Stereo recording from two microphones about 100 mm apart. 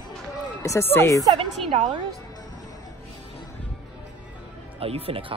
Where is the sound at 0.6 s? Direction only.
25° left (ahead or behind).